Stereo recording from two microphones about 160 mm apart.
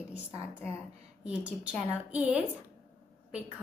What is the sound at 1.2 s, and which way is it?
A woman's voice, 5° right (ahead or behind).